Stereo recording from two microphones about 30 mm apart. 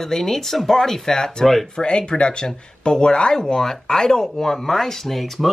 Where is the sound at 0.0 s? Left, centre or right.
Centre.